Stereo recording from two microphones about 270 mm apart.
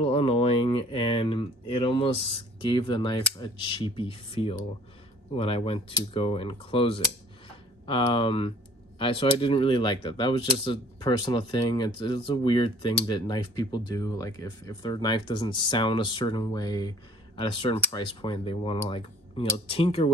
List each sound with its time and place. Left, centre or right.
0.0 s speech: left